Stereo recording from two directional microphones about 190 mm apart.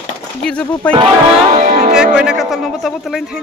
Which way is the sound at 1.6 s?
45° right (ahead or behind).